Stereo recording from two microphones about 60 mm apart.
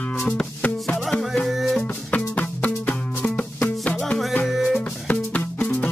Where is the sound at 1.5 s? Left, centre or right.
Centre.